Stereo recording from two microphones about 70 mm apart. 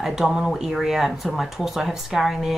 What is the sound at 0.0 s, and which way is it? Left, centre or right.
Speech, centre.